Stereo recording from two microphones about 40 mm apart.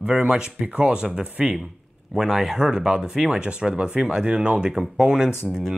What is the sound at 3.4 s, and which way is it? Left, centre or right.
Speech, right.